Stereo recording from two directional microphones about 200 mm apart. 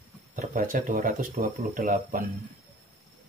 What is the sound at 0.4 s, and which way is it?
Speech, 45° right (ahead or behind).